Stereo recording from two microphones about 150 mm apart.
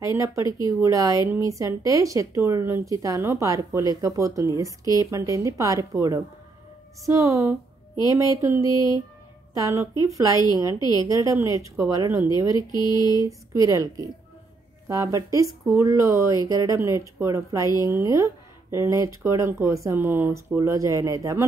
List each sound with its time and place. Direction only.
0.0 s speech: 20° right (ahead or behind)
12.5 s mantra: 30° left (ahead or behind)
13.2 s speech: 20° right (ahead or behind)